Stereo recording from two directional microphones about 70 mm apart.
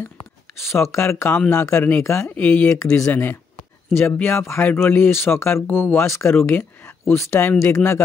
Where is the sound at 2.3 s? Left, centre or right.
Left.